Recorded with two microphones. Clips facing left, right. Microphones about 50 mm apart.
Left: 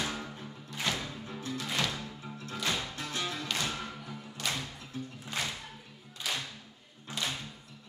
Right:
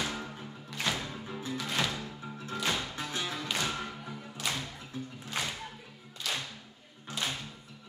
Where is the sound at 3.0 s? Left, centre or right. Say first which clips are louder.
Even; right; by 4.6 s centre.